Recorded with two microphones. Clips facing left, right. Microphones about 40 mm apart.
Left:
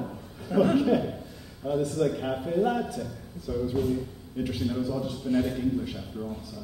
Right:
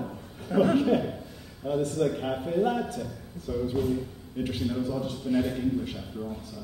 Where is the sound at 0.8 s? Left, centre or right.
Centre.